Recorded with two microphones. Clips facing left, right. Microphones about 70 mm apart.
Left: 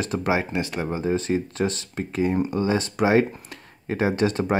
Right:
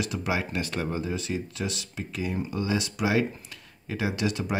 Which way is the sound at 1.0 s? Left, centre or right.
Left.